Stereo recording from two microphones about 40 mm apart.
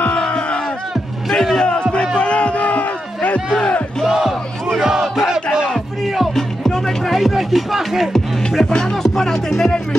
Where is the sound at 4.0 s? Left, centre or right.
Centre.